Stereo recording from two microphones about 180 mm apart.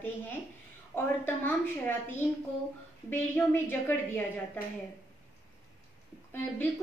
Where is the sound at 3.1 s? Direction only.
10° left (ahead or behind).